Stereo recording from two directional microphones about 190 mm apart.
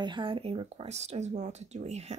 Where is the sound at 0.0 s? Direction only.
25° right (ahead or behind).